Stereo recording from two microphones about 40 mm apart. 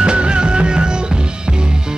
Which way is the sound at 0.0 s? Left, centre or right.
Right.